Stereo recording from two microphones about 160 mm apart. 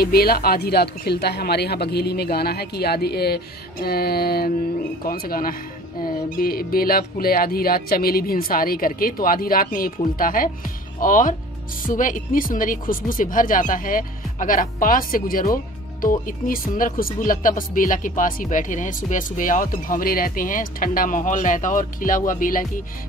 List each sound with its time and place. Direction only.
0.0 s a woman's voice: 75° left (ahead or behind)
3.8 s mantra: 75° left (ahead or behind)
5.0 s speech: 65° left (ahead or behind)